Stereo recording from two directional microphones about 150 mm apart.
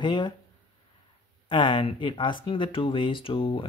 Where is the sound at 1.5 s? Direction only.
30° left (ahead or behind).